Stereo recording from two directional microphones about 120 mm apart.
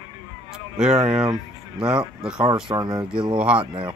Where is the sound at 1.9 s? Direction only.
10° right (ahead or behind).